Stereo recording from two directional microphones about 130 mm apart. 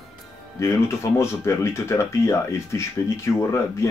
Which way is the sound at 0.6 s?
20° left (ahead or behind).